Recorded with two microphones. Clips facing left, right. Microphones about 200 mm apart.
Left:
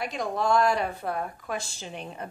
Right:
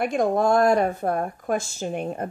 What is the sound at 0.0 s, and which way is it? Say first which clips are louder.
A woman's voice: right 8 dB; 50° right (ahead or behind).